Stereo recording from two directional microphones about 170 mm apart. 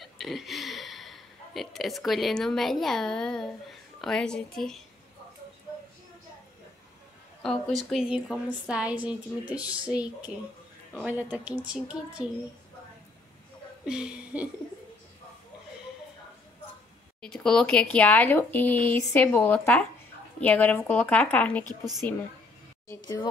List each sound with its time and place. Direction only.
0.0 s a woman's voice: centre (ahead or behind)
7.4 s a woman's voice: centre (ahead or behind)
11.0 s a woman's voice: 10° right (ahead or behind)
13.8 s a woman's voice: 5° right (ahead or behind)
17.2 s speech: 5° left (ahead or behind)